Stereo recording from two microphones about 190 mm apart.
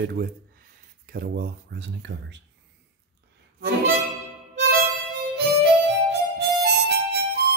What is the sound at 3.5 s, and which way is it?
Music, 60° right (ahead or behind).